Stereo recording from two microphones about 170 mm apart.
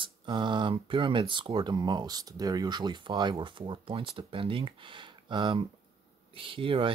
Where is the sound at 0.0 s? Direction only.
30° right (ahead or behind).